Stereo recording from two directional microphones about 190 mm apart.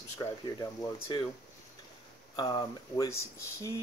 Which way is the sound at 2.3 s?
20° left (ahead or behind).